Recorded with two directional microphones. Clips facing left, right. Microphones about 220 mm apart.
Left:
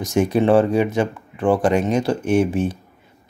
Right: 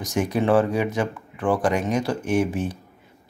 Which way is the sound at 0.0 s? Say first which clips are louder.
Left 5 dB; 25° left (ahead or behind).